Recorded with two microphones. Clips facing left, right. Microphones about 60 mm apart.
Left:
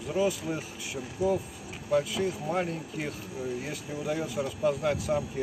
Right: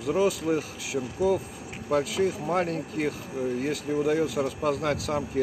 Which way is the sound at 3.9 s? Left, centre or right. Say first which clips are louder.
Right 11 dB; right.